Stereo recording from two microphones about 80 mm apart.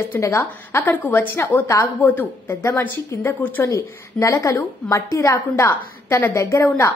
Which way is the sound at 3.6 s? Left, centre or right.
Left.